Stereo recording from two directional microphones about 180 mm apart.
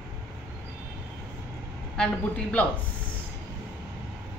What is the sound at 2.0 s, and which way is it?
Speech, 5° left (ahead or behind).